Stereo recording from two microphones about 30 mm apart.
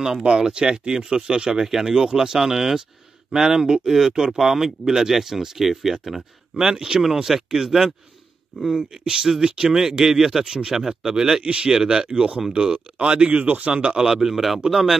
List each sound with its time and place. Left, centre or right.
0.5 s speech: right; by 6.6 s centre
6.6 s speech: right
7.2 s speech: centre
8.7 s speech: right
11.4 s speech: right
11.7 s speech: centre
12.7 s speech: right
13.4 s a man's voice: right
13.7 s speech: right
14.2 s speech: centre